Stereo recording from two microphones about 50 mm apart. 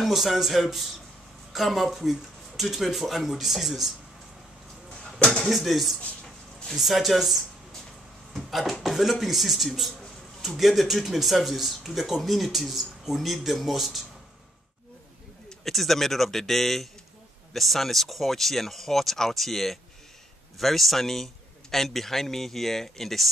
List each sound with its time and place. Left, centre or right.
0.0 s speech: centre
5.2 s speech: centre
5.5 s speech: centre
15.6 s speech: centre